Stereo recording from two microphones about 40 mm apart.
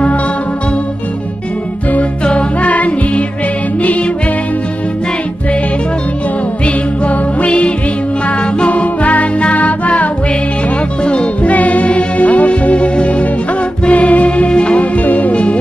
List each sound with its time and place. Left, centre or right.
2.2 s music: left
6.6 s music: left
11.1 s music: left
11.5 s music: left
15.0 s music: left